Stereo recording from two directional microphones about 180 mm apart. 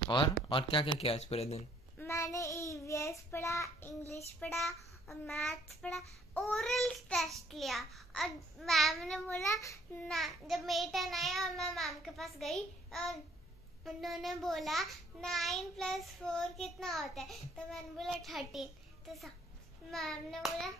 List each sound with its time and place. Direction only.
0.1 s speech: 25° left (ahead or behind)
2.0 s child singing: 15° left (ahead or behind)
4.6 s a child's voice: centre (ahead or behind)
19.9 s a child's voice: centre (ahead or behind)